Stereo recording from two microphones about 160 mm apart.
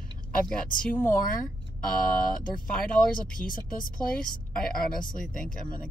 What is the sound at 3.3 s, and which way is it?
Speech, 60° left (ahead or behind).